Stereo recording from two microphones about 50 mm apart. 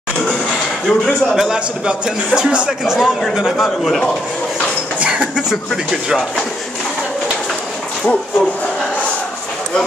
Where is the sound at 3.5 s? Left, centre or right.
Centre.